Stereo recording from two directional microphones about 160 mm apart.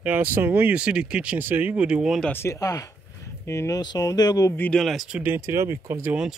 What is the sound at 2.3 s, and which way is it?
Speech, 15° left (ahead or behind).